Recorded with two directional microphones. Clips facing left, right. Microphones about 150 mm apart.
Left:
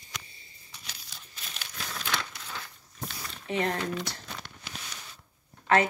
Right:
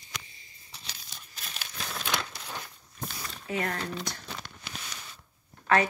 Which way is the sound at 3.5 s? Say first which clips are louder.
Left 3 dB; 25° left (ahead or behind).